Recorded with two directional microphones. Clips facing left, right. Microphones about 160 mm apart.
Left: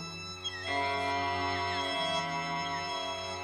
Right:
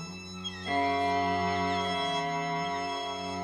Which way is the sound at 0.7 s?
40° right (ahead or behind).